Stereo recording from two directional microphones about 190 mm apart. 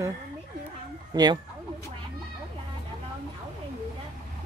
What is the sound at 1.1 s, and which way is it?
Speech, 20° right (ahead or behind).